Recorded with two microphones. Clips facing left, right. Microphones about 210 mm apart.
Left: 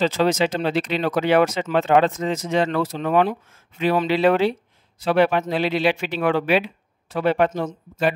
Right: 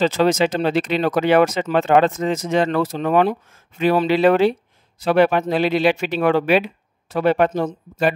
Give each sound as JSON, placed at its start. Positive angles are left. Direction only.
{"t": 0.0, "sound": "speech", "side_deg": -50}